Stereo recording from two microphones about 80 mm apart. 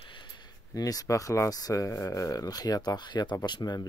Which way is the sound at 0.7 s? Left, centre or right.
Left.